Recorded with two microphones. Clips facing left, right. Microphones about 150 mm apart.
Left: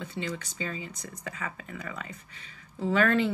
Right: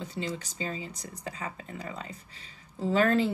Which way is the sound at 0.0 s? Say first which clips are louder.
Even; 35° right (ahead or behind).